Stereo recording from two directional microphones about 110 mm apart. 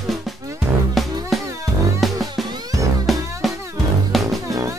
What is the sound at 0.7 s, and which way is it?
Music, 20° right (ahead or behind).